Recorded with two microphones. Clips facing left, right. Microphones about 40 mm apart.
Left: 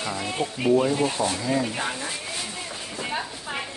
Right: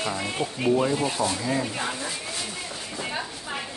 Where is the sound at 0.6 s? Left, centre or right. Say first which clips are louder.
Left 2 dB; centre.